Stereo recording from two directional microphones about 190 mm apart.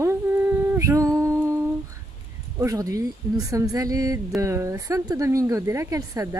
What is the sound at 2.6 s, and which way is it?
Speech, 20° right (ahead or behind).